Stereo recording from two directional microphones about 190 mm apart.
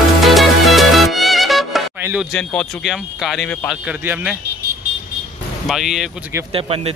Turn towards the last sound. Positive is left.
turn(degrees=-30)  # may be behind; listen again after turning